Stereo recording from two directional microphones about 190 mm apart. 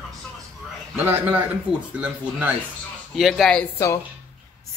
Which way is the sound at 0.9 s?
5° right (ahead or behind).